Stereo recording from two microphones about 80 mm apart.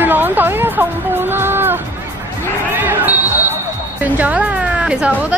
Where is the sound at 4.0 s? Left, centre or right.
Centre.